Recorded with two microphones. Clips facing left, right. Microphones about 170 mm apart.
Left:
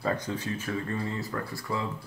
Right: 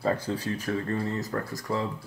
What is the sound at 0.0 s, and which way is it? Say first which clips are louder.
Speech: right 3 dB; 30° right (ahead or behind).